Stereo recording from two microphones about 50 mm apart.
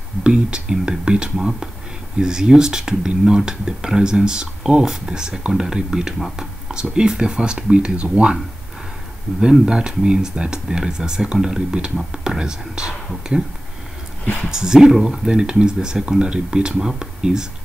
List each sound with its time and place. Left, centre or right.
0.2 s speech: centre
9.4 s speech: centre